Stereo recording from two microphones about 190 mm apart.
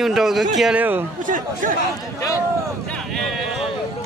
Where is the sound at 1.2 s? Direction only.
45° right (ahead or behind).